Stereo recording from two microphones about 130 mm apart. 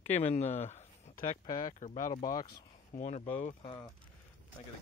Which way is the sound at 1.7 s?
75° left (ahead or behind).